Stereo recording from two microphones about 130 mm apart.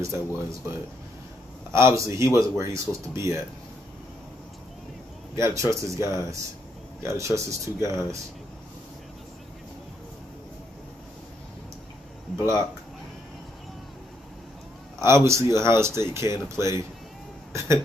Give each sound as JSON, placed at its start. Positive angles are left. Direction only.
{"t": 0.0, "sound": "speech", "side_deg": -25}
{"t": 1.7, "sound": "speech", "side_deg": -20}
{"t": 5.3, "sound": "speech", "side_deg": -25}
{"t": 15.0, "sound": "speech", "side_deg": -20}
{"t": 17.5, "sound": "hiccup", "side_deg": -20}